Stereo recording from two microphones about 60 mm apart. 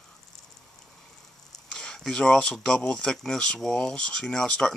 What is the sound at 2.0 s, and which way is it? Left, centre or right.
Speech, centre.